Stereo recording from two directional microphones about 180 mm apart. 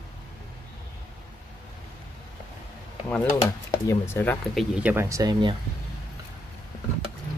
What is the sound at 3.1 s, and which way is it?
Speech, 15° left (ahead or behind).